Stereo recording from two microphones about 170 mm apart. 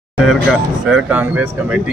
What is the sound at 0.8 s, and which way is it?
Speech, 5° right (ahead or behind).